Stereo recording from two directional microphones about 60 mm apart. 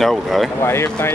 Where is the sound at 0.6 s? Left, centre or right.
Left.